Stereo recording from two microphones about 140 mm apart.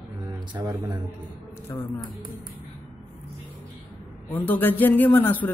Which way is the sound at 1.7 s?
15° left (ahead or behind).